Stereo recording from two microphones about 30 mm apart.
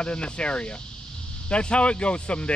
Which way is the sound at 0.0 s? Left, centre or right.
Left.